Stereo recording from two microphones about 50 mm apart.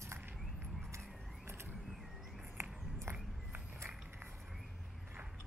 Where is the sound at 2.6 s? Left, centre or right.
Right.